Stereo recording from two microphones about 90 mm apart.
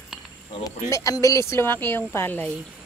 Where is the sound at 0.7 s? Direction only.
35° left (ahead or behind); by 2.5 s 20° left (ahead or behind).